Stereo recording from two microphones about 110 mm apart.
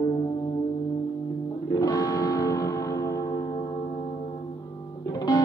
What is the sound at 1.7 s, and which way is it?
Music, 35° left (ahead or behind).